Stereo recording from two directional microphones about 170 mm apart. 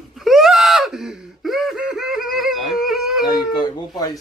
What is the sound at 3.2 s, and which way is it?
Baby cry, 25° left (ahead or behind).